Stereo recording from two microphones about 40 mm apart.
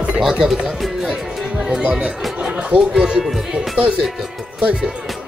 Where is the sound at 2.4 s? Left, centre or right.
Right.